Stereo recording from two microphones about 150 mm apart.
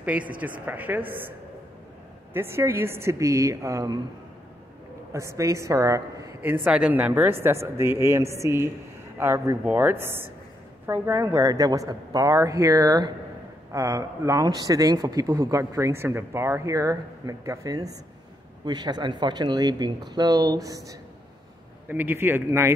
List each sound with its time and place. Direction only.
0.0 s a woman's voice: 10° right (ahead or behind)
2.3 s speech: 15° right (ahead or behind)
5.1 s a woman's voice: 20° right (ahead or behind)